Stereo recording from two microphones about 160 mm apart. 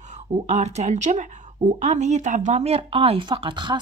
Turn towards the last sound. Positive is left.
turn(degrees=-30)  # may be behind; listen again after turning